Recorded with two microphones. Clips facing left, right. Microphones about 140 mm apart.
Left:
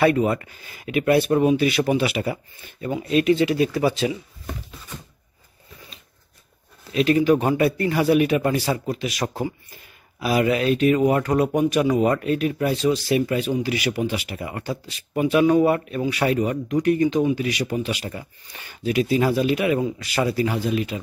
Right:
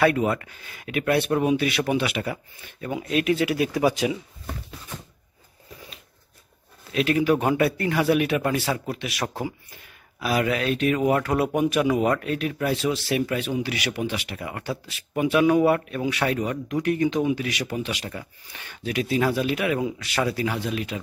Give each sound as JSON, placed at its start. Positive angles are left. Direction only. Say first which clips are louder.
{"t": 0.0, "sound": "speech", "louder": "left 2 dB", "side_deg": 0}
{"t": 6.9, "sound": "speech", "louder": "left 3 dB", "side_deg": 0}